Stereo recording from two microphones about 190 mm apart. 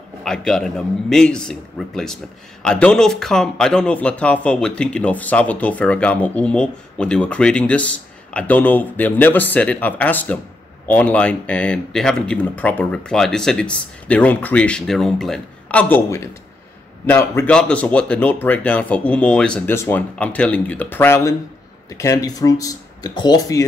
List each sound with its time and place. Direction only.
0.2 s a man's voice: 5° left (ahead or behind); by 23.6 s 20° left (ahead or behind)